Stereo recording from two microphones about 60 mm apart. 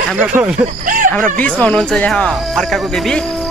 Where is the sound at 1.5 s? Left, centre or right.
Left.